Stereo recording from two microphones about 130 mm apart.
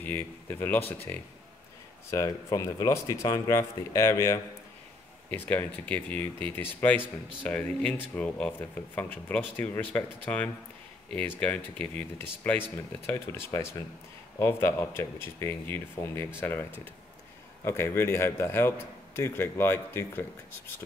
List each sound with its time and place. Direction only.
0.0 s speech: 15° left (ahead or behind)
2.0 s speech: 25° left (ahead or behind)
17.6 s speech: 20° left (ahead or behind)